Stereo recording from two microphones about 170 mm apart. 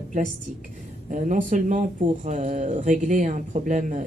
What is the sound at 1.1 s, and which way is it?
Speech, 50° right (ahead or behind).